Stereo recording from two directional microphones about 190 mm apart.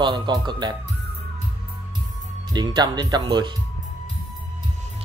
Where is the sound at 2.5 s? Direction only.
20° right (ahead or behind).